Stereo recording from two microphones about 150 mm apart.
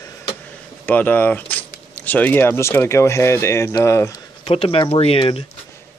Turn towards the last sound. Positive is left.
turn(degrees=40)  # may be behind; listen again after turning